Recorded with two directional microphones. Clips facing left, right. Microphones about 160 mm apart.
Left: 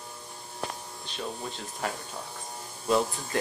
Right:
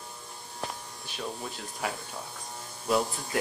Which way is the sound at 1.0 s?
5° right (ahead or behind).